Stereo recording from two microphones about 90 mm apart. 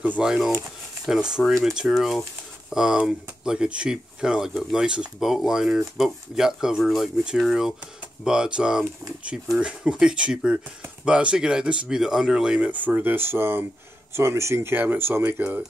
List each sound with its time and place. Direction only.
0.0 s speech: 10° right (ahead or behind)
4.8 s speech: 10° right (ahead or behind)
12.8 s speech: 20° right (ahead or behind)